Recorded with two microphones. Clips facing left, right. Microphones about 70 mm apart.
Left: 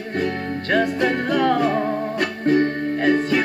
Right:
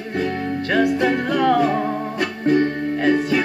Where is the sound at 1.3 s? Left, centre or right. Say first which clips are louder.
Right 1 dB; left.